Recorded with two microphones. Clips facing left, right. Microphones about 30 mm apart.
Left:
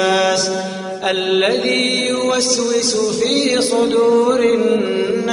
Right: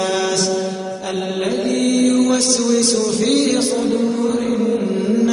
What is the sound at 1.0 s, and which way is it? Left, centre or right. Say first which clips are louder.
Mantra: left 7 dB; left.